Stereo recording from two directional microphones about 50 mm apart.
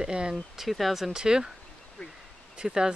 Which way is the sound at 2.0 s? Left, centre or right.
Centre.